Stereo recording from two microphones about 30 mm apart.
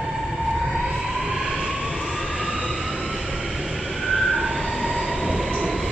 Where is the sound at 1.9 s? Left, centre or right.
Centre.